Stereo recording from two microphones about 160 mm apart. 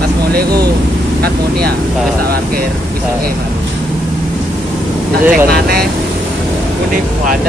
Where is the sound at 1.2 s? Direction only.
80° right.